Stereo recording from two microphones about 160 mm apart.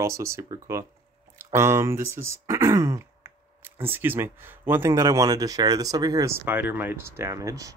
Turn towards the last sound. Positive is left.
turn(degrees=-20)  # may be behind; listen again after turning